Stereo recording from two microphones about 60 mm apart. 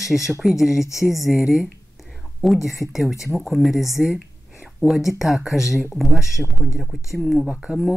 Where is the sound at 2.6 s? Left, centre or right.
Left.